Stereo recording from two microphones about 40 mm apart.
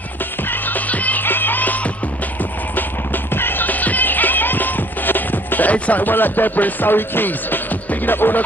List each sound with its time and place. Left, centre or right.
0.5 s music: left
1.2 s music: left
3.3 s music: left